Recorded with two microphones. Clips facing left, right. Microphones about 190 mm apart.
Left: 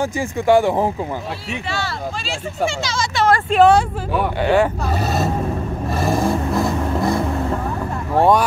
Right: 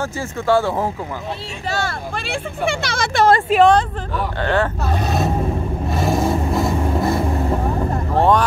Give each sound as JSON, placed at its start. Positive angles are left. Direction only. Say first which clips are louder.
{"t": 0.0, "sound": "speech", "louder": "left 3 dB", "side_deg": 15}
{"t": 1.7, "sound": "speech", "louder": "right 3 dB", "side_deg": -50}
{"t": 3.5, "sound": "speech", "louder": "left 2 dB", "side_deg": -5}
{"t": 4.4, "sound": "speech", "louder": "left 3 dB", "side_deg": 10}
{"t": 5.9, "sound": "vehicle", "louder": "even", "side_deg": 0}
{"t": 8.2, "sound": "speech", "louder": "left 1 dB", "side_deg": 10}